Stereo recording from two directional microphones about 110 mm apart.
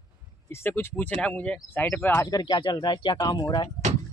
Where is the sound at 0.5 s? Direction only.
25° left (ahead or behind).